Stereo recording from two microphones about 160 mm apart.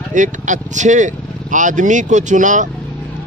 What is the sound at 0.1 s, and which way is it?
Speech, 55° right (ahead or behind).